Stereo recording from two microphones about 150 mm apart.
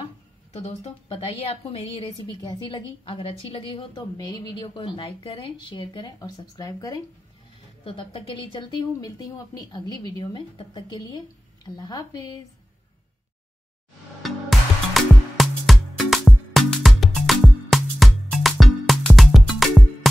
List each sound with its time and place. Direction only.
0.5 s speech: 45° left (ahead or behind)
1.0 s a woman's voice: 35° left (ahead or behind)
7.8 s a woman's voice: 35° left (ahead or behind)
15.0 s music: centre (ahead or behind)